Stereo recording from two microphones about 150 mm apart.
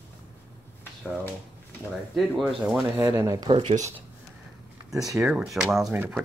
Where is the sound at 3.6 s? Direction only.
40° right (ahead or behind).